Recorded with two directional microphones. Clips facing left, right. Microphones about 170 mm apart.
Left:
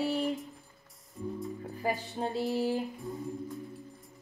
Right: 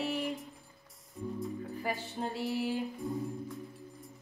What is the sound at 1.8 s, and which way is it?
Music, 40° left (ahead or behind).